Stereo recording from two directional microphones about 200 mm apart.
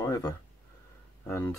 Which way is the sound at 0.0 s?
15° left (ahead or behind).